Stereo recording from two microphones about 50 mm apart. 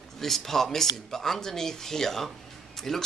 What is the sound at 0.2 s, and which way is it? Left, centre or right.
Speech, centre.